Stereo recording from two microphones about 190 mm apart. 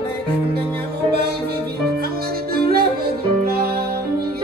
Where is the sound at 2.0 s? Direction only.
55° right (ahead or behind).